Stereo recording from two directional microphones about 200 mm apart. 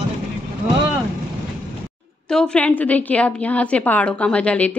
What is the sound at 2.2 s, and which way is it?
A woman's voice, 5° left (ahead or behind).